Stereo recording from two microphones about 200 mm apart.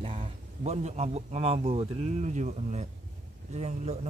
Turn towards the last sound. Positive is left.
turn(degrees=-35)  # may be behind; listen again after turning